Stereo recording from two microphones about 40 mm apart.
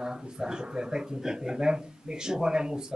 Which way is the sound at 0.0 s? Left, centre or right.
Centre.